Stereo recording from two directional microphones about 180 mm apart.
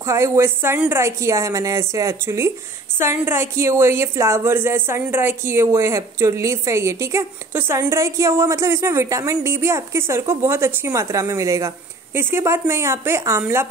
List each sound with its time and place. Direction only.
0.0 s a woman's voice: 15° right (ahead or behind)